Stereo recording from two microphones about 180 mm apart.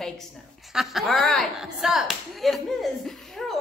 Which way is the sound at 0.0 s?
Centre (ahead or behind).